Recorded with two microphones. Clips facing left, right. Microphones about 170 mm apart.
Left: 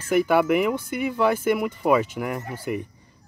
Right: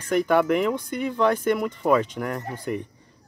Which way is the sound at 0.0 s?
5° left (ahead or behind).